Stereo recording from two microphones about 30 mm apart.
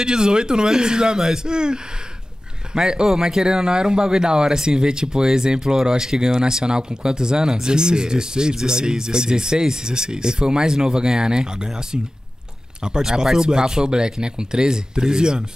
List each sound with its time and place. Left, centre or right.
0.0 s speech: right